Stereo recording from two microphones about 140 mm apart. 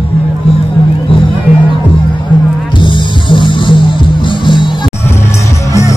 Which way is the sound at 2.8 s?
35° left (ahead or behind).